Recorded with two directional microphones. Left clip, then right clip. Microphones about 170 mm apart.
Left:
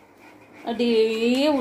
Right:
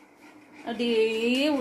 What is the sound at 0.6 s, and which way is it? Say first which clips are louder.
Speech: left 4 dB; 20° left (ahead or behind).